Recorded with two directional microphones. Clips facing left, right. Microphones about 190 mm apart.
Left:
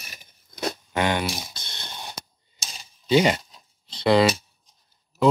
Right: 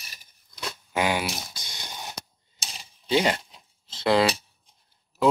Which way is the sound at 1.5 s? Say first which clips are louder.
Even; 10° right (ahead or behind).